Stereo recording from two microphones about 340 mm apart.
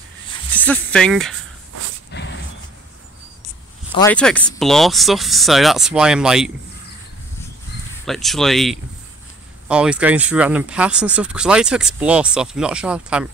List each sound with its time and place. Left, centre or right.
0.3 s speech: centre
2.1 s vehicle: left
3.9 s speech: centre
8.0 s speech: centre